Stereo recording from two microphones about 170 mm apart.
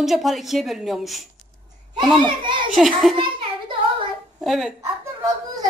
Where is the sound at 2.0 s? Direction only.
25° right (ahead or behind).